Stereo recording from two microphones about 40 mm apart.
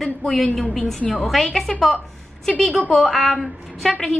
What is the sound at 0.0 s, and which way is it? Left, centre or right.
A woman's voice, centre.